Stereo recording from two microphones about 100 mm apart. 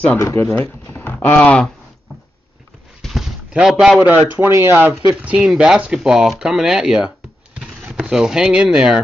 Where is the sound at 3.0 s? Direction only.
Centre (ahead or behind).